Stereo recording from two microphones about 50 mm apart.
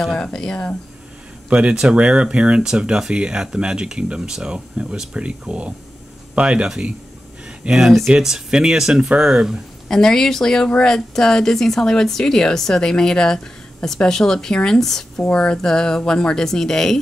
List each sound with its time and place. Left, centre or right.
0.1 s a woman's voice: centre
1.5 s speech: right
8.2 s speech: centre
9.8 s a woman's voice: centre
15.2 s a woman's voice: centre